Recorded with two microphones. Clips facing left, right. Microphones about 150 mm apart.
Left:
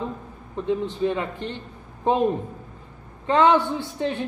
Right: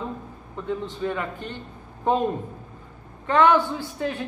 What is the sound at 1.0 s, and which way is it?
Speech, 20° left (ahead or behind).